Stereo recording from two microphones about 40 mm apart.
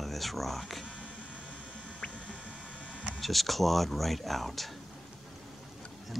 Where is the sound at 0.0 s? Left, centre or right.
Centre.